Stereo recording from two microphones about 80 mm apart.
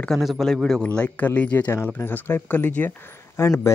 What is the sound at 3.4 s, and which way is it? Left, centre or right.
Speech, left.